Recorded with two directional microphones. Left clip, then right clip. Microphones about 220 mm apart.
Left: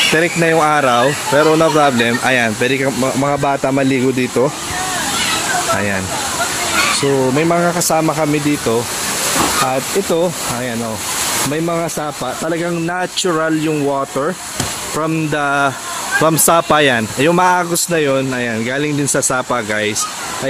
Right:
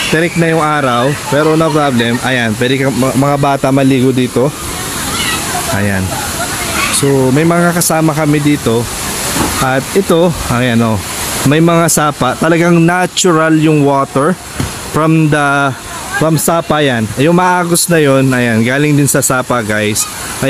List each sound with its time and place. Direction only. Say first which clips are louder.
0.1 s speech: right 1 dB; centre (ahead or behind)
7.0 s speech: right 3 dB; 10° right (ahead or behind)
9.7 s speech: right 5 dB; 25° right (ahead or behind)
16.2 s speech: even; 5° right (ahead or behind)